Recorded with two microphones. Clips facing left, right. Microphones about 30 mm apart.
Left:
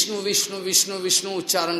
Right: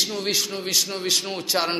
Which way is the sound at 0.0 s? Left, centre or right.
Centre.